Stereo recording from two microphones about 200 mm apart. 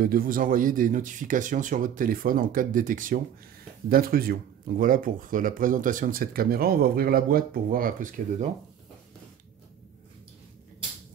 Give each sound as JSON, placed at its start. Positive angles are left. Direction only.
{"t": 0.0, "sound": "speech", "side_deg": -45}